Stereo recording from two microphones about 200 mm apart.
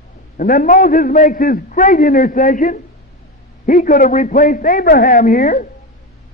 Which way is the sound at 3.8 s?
45° left (ahead or behind).